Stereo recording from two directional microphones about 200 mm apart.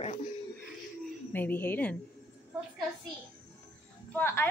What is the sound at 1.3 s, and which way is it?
Speech, 10° left (ahead or behind).